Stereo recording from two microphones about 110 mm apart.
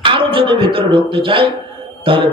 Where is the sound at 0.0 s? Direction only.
50° right (ahead or behind).